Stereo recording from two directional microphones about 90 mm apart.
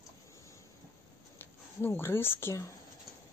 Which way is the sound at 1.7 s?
25° left (ahead or behind).